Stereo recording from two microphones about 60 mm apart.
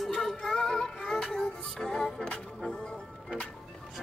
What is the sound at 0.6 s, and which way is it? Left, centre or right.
Music, centre.